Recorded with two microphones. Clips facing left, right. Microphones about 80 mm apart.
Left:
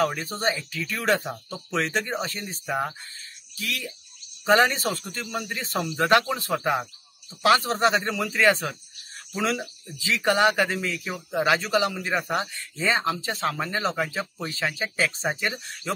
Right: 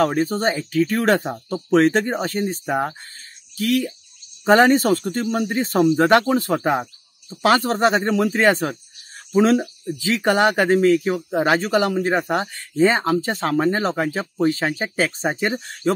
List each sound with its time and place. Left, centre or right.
0.0 s speech: right
11.3 s speech: right